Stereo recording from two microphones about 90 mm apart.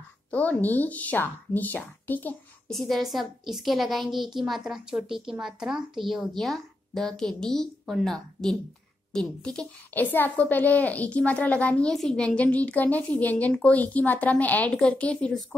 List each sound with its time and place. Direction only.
0.3 s a woman's voice: 15° left (ahead or behind)
2.7 s a woman's voice: centre (ahead or behind)